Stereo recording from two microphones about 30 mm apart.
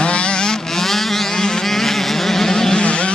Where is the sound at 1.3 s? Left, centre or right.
Left.